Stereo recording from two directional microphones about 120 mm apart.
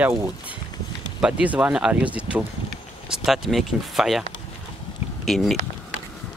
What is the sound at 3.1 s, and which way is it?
Speech, centre (ahead or behind).